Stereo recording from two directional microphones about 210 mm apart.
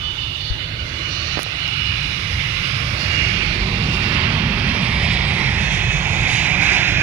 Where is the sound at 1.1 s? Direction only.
20° right (ahead or behind).